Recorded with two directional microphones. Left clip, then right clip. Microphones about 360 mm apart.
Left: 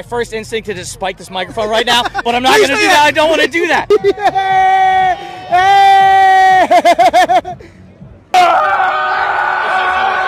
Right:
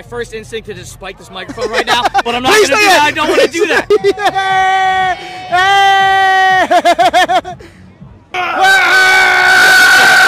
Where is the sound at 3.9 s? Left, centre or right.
Centre.